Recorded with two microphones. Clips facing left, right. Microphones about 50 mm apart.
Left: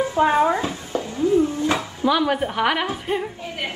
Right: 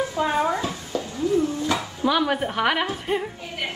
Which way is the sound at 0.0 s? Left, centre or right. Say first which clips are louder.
Left 5 dB; left.